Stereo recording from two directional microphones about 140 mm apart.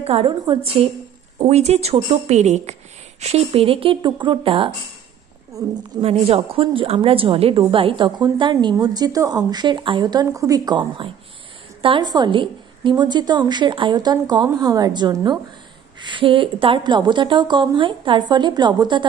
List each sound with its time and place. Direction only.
0.0 s speech: 40° right (ahead or behind)
1.5 s a woman's voice: 50° right (ahead or behind)
5.6 s a woman's voice: 25° right (ahead or behind)
5.9 s a woman's voice: 45° right (ahead or behind)